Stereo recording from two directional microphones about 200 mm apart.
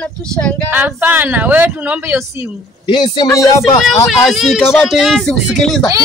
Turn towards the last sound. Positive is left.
turn(degrees=0)  # may be behind; listen again after turning